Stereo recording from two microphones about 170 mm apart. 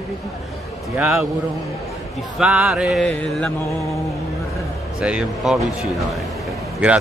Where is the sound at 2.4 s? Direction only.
5° right (ahead or behind).